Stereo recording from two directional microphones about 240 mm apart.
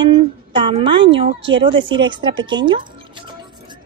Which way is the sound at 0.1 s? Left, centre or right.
Centre.